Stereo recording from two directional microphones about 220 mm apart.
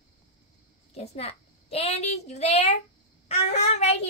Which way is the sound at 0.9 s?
30° left (ahead or behind).